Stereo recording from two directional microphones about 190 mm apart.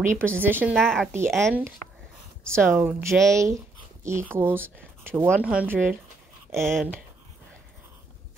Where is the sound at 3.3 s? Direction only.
15° right (ahead or behind); by 6.9 s centre (ahead or behind).